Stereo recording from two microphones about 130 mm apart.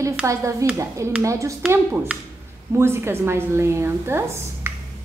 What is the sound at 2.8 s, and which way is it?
A woman's voice, 20° right (ahead or behind).